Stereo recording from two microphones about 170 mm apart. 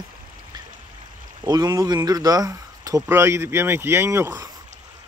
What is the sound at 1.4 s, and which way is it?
Speech, 25° right (ahead or behind).